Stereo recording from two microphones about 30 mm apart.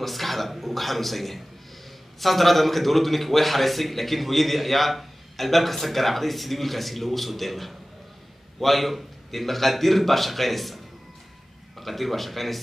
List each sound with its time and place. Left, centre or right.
0.0 s a man's voice: centre
11.8 s a man's voice: centre